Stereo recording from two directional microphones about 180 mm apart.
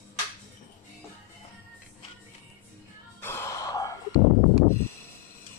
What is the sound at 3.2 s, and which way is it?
Sigh, 15° left (ahead or behind).